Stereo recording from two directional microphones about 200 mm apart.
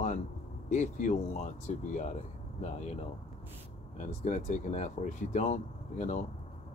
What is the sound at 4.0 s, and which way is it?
Speech, 35° left (ahead or behind).